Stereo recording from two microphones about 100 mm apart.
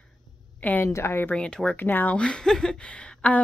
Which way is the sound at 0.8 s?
25° left (ahead or behind).